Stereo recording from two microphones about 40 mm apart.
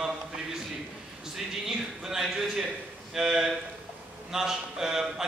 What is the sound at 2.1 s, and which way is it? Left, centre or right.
A man's voice, centre.